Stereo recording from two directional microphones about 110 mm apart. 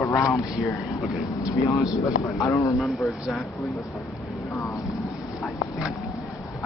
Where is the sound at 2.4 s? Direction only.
25° left (ahead or behind).